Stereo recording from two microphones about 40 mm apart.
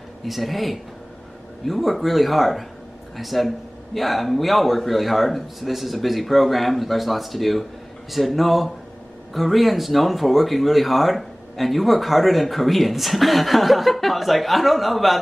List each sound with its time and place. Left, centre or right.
0.2 s speech: centre